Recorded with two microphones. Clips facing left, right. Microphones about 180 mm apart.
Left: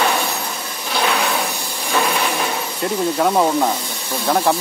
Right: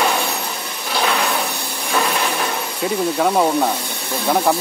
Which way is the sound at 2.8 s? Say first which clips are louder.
Even; centre (ahead or behind).